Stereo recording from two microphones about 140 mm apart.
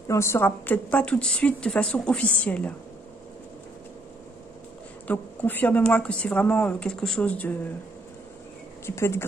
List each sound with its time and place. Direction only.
0.1 s a woman's voice: 20° left (ahead or behind)
5.0 s a woman's voice: 10° left (ahead or behind)
8.8 s a woman's voice: 20° left (ahead or behind)